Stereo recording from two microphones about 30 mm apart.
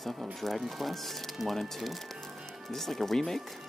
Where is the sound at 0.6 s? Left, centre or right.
Centre.